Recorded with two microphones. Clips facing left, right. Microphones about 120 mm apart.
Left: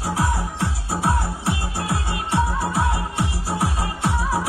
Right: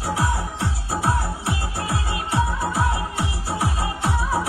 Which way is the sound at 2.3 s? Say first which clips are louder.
Left 2 dB; centre (ahead or behind).